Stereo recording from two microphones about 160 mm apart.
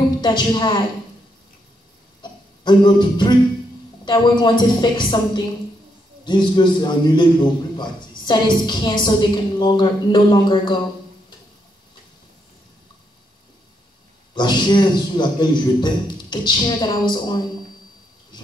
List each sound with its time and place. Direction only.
0.2 s a man's voice: 30° left (ahead or behind)
2.6 s a man's voice: 30° left (ahead or behind)
14.3 s a man's voice: 30° left (ahead or behind)